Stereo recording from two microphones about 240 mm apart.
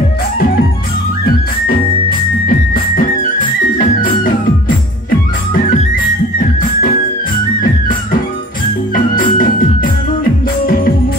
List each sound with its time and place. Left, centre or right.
2.4 s music: left
8.9 s music: left